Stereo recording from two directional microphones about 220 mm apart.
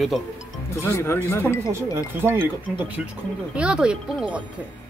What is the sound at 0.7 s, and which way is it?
Speech, 10° left (ahead or behind).